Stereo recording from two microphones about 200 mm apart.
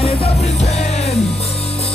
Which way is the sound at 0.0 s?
30° left (ahead or behind).